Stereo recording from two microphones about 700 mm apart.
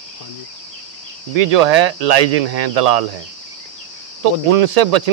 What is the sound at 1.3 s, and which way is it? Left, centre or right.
Speech, right.